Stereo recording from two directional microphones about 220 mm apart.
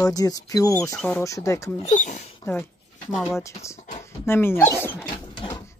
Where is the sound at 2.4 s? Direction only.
10° left (ahead or behind).